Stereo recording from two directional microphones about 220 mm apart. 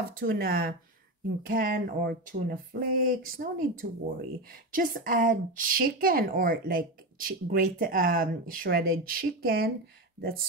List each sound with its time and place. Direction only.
0.1 s a woman's voice: 40° right (ahead or behind)